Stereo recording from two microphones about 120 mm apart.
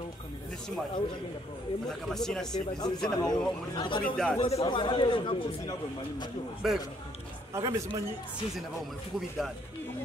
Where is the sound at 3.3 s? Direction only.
40° left (ahead or behind).